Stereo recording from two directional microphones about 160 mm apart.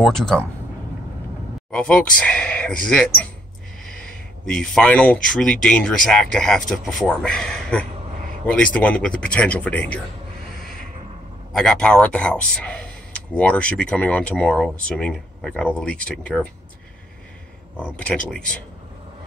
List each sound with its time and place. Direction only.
0.0 s speech: 5° left (ahead or behind)
1.7 s speech: 5° left (ahead or behind)
10.6 s a sound: 65° right (ahead or behind)
11.5 s speech: 5° left (ahead or behind)
17.7 s speech: 10° left (ahead or behind)